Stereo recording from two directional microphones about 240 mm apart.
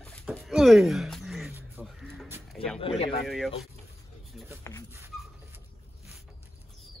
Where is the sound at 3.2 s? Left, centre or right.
Centre.